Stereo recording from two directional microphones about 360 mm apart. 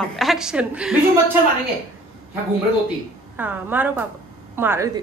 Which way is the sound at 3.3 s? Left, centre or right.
Centre.